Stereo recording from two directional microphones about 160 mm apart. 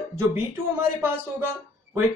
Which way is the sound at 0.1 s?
15° right (ahead or behind).